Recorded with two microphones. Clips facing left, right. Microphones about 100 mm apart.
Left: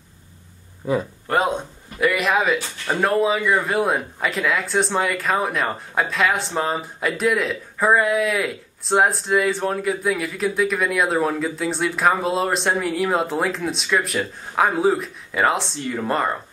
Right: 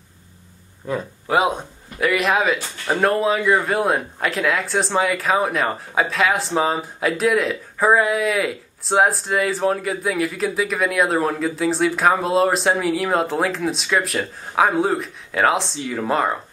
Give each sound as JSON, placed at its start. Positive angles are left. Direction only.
{"t": 0.8, "sound": "speech", "side_deg": 5}